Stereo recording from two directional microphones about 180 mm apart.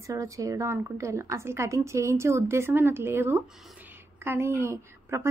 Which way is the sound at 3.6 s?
10° right (ahead or behind).